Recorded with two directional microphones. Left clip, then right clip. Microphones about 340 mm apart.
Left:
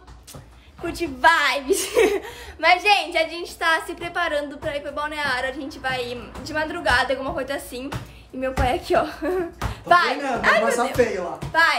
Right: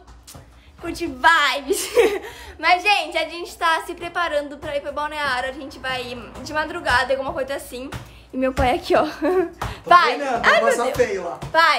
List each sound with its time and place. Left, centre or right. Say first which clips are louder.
0.8 s a woman's voice: right 1 dB; centre
8.4 s speech: right 3 dB; right
11.0 s speech: left 3 dB; centre
11.5 s speech: right 2 dB; right